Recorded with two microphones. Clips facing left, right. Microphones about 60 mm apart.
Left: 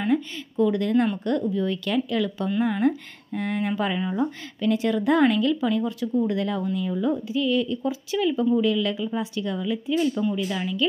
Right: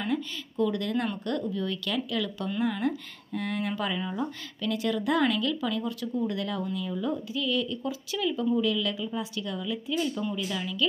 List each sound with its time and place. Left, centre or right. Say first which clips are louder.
0.0 s speech: left 6 dB; left